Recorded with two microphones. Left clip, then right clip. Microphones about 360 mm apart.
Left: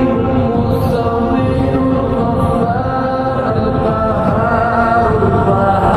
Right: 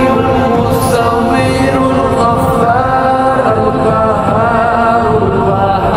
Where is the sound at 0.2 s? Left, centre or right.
Right.